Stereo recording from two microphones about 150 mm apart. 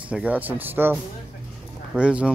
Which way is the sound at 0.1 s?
10° right (ahead or behind).